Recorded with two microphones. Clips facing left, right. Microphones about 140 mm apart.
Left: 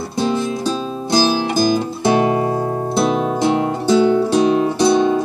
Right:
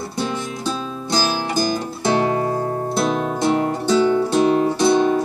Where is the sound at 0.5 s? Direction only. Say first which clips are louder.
Left 5 dB; 30° left (ahead or behind).